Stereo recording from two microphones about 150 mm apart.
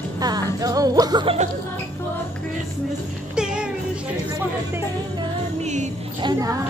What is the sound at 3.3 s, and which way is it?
Music, 5° right (ahead or behind).